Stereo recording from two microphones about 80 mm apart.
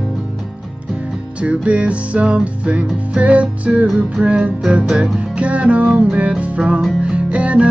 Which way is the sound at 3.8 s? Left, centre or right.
Centre.